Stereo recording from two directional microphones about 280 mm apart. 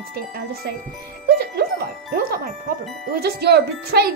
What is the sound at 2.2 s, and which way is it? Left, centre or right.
Speech, right.